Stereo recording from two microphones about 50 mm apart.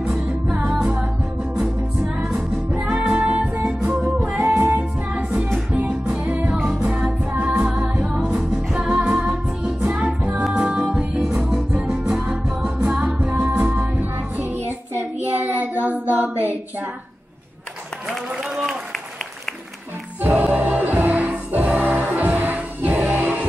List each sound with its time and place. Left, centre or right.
0.0 s music: centre
3.1 s music: right
6.8 s music: centre
8.0 s music: centre
13.2 s music: right
15.0 s child singing: right
20.2 s music: right